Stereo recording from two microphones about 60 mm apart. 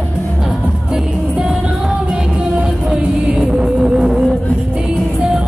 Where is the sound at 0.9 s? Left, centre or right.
Centre.